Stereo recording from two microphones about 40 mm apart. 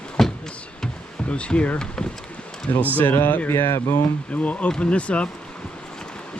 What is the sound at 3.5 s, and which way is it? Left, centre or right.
Speech, left.